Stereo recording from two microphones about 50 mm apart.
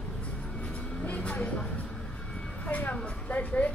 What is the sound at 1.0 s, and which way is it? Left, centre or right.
Vehicle, left.